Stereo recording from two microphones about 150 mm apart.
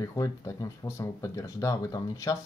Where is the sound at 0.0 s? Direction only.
20° left (ahead or behind).